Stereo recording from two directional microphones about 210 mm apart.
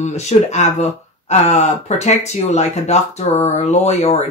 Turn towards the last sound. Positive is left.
turn(degrees=30)  # may be behind; listen again after turning